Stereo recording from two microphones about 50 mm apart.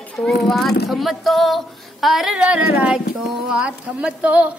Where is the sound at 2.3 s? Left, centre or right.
Right.